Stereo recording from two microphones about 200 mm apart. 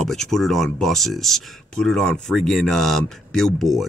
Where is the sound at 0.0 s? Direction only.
Centre (ahead or behind).